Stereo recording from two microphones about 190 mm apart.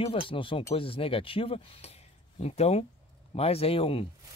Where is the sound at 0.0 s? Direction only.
30° left (ahead or behind).